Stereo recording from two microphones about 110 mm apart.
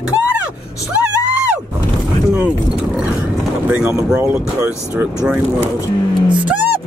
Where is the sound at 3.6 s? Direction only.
10° right (ahead or behind).